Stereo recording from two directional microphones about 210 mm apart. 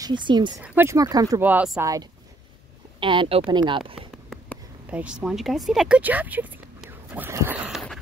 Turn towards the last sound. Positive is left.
turn(degrees=-5)  # may be behind; listen again after turning